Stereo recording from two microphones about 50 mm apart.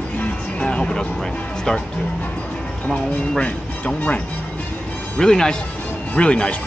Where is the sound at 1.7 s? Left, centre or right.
Centre.